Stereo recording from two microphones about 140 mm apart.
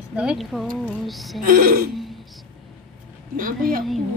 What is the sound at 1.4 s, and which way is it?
Speech, 90° right.